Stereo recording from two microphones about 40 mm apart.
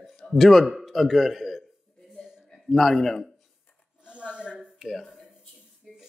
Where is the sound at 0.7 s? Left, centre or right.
Centre.